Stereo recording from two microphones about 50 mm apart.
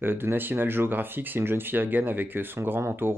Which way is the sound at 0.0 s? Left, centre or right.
Right.